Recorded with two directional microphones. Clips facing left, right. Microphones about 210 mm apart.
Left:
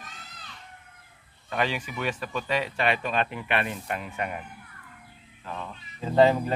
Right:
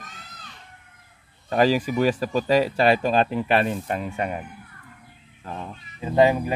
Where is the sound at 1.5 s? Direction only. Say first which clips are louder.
Right 9 dB; 40° right (ahead or behind).